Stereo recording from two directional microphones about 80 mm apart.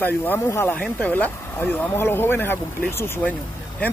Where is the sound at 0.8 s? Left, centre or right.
Centre.